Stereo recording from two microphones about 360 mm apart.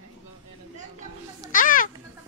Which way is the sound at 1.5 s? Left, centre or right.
Left.